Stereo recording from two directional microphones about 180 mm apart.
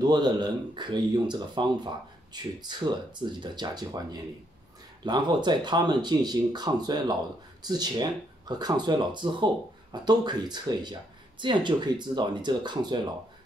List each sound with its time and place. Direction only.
0.0 s speech: 25° right (ahead or behind)